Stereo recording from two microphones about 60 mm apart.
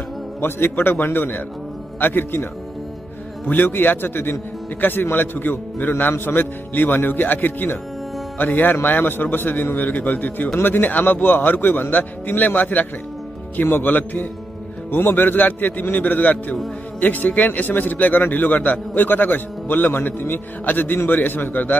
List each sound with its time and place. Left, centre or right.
0.4 s a man's voice: left
3.4 s a man's voice: left